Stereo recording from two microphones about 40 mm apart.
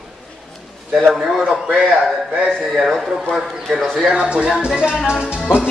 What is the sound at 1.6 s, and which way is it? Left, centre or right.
Speech, right.